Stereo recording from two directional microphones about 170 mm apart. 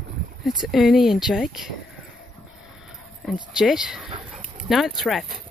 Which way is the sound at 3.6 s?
5° right (ahead or behind).